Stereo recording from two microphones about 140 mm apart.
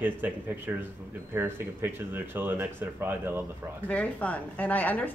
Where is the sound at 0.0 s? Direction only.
10° right (ahead or behind).